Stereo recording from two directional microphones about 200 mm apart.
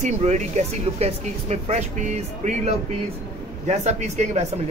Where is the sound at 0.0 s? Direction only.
35° right (ahead or behind).